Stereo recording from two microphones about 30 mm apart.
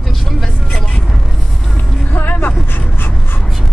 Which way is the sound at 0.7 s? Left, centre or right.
Left.